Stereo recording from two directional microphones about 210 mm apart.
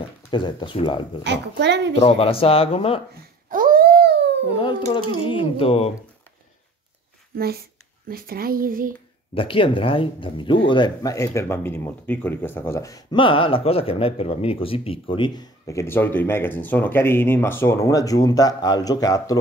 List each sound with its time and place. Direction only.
0.3 s speech: 20° left (ahead or behind)
1.2 s a child's voice: 55° right (ahead or behind)
2.0 s speech: 25° left (ahead or behind)
3.2 s babbling: 40° right (ahead or behind)
4.6 s speech: 25° left (ahead or behind)
8.1 s speech: 45° right (ahead or behind)
9.3 s speech: 25° left (ahead or behind)